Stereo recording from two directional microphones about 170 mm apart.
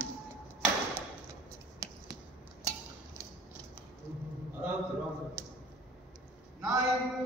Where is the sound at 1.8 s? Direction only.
20° right (ahead or behind).